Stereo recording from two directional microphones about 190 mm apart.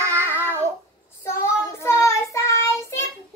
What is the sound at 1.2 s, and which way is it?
Child singing, 15° left (ahead or behind).